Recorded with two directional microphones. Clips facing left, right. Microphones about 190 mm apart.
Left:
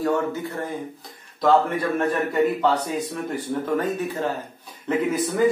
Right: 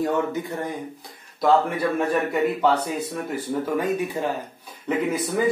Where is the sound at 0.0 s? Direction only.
15° right (ahead or behind).